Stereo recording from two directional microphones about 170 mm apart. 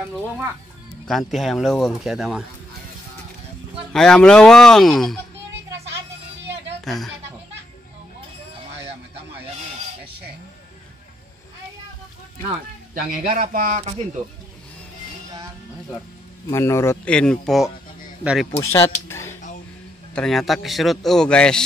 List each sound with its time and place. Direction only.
1.0 s a man's voice: centre (ahead or behind)
3.9 s a man's voice: 5° left (ahead or behind)
6.8 s a woman's voice: centre (ahead or behind)
12.9 s speech: 60° right (ahead or behind)
16.4 s a man's voice: 15° left (ahead or behind)
17.1 s a man's voice: 5° left (ahead or behind)
18.6 s a man's voice: 15° left (ahead or behind)
19.0 s a sound: 15° left (ahead or behind)
20.2 s a man's voice: centre (ahead or behind)